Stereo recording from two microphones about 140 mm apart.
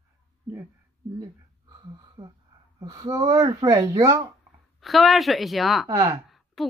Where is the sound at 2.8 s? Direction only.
25° right (ahead or behind).